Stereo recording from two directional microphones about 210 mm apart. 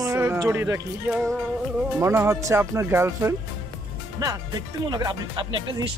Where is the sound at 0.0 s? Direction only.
15° right (ahead or behind).